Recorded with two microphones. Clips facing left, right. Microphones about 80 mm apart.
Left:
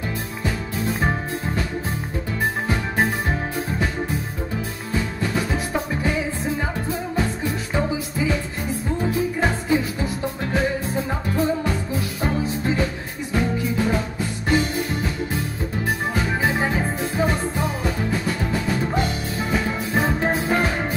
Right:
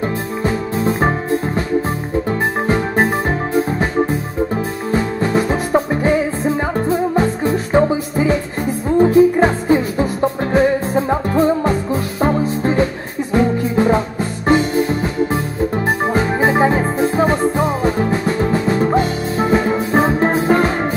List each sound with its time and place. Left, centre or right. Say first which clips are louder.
0.4 s music: right 9 dB; right
2.6 s music: right 8 dB; right
4.9 s music: right 8 dB; right
11.1 s music: right 8 dB; right
16.1 s music: right 7 dB; right